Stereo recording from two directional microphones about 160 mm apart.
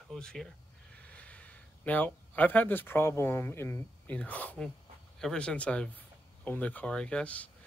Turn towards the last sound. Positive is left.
turn(degrees=10)  # may be behind; listen again after turning